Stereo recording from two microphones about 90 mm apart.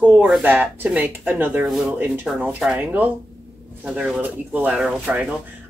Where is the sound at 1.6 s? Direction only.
5° right (ahead or behind).